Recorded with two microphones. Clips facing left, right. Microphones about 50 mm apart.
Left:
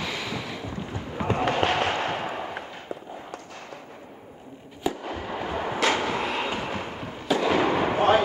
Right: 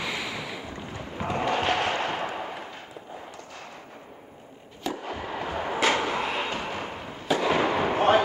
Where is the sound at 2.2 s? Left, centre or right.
Centre.